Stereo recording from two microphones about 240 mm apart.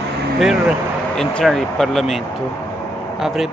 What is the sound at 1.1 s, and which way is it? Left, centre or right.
Speech, centre.